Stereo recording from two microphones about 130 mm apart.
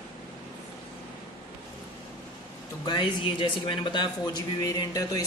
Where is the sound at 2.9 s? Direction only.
40° left (ahead or behind).